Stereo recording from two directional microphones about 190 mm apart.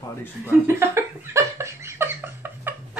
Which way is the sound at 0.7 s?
15° right (ahead or behind).